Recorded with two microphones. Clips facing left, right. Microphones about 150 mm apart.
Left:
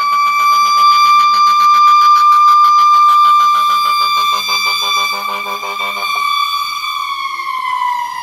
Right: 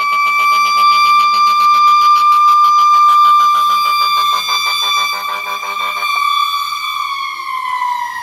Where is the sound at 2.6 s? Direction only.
Centre (ahead or behind); by 5.3 s 15° left (ahead or behind).